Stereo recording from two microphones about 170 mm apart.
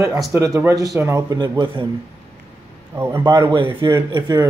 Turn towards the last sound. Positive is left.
turn(degrees=-20)  # may be behind; listen again after turning